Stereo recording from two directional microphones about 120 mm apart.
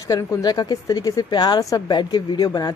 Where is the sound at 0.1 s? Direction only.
30° left (ahead or behind).